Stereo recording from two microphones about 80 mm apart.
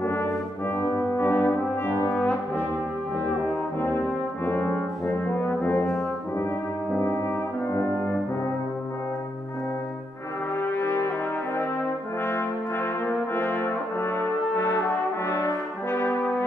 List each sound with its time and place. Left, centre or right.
0.0 s brass instrument: left
2.0 s brass instrument: centre
4.5 s brass instrument: centre
10.6 s brass instrument: left
13.0 s brass instrument: left